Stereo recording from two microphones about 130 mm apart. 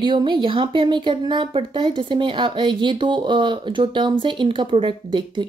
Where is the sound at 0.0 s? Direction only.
35° right (ahead or behind).